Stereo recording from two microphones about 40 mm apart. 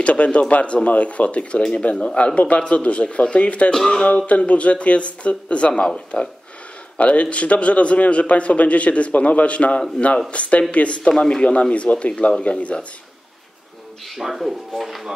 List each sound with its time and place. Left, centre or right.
0.0 s a man's voice: left
3.7 s speech: centre
4.3 s a man's voice: left
7.0 s a man's voice: left
11.1 s a man's voice: centre
14.1 s speech: centre